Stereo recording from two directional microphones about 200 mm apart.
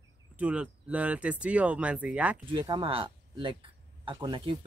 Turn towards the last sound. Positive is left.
turn(degrees=-25)  # may be behind; listen again after turning